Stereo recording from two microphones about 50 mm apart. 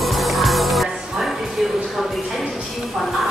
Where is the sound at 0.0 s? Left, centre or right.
Centre.